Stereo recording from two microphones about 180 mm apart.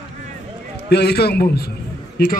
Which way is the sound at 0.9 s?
65° left (ahead or behind).